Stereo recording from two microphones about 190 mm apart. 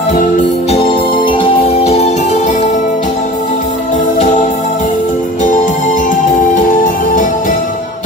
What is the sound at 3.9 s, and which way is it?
Music, 40° left (ahead or behind).